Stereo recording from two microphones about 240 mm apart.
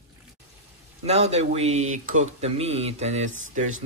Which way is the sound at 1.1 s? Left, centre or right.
Right.